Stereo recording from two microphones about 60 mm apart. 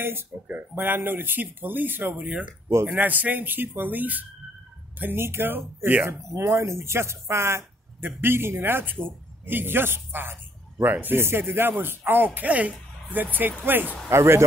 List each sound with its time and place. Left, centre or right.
0.0 s speech: right
2.7 s speech: right
6.0 s speech: right
12.4 s speech: right
14.1 s speech: right